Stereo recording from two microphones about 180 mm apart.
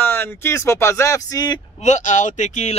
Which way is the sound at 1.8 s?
40° left (ahead or behind).